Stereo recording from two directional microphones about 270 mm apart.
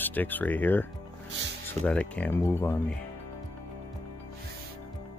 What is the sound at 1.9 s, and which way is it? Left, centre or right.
Speech, centre.